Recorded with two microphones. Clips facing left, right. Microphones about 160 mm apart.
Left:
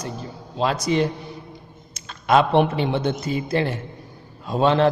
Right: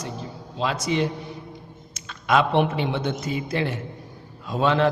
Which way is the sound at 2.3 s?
35° left (ahead or behind).